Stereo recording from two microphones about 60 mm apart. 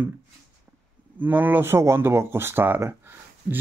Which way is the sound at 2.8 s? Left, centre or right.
Right.